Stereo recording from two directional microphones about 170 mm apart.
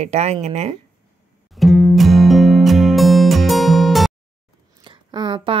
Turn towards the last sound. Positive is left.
turn(degrees=-30)  # may be behind; listen again after turning